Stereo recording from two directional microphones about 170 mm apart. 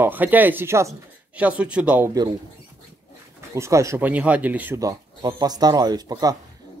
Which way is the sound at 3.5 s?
15° right (ahead or behind).